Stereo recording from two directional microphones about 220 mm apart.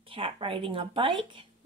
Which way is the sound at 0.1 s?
25° right (ahead or behind).